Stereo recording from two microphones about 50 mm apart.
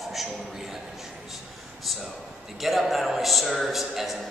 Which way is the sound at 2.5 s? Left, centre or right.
Centre.